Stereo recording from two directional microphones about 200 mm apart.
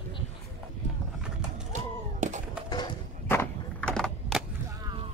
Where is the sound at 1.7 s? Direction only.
35° right (ahead or behind).